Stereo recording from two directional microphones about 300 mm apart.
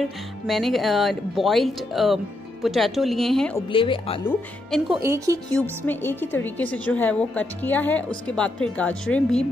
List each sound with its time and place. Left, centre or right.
0.0 s a woman's voice: centre
3.7 s speech: centre
4.3 s a woman's voice: centre
4.9 s speech: centre
5.9 s a woman's voice: centre